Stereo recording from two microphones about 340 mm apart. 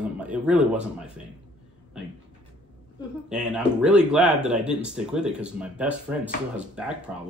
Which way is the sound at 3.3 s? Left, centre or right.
Centre.